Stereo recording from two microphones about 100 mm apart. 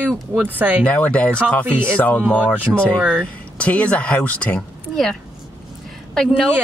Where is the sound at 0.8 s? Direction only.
15° left (ahead or behind).